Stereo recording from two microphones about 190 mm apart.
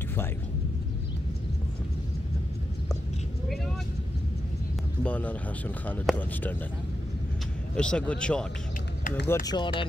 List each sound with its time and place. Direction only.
5.0 s speech: 5° left (ahead or behind)
7.7 s speech: 5° left (ahead or behind)
9.5 s speech: 25° left (ahead or behind)